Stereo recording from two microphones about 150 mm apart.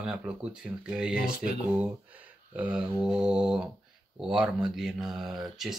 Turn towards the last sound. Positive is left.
turn(degrees=0)  # may be behind; listen again after turning